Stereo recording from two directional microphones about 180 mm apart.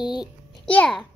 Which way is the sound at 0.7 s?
5° left (ahead or behind).